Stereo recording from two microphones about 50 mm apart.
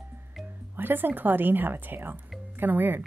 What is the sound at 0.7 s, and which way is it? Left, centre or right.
A woman's voice, right.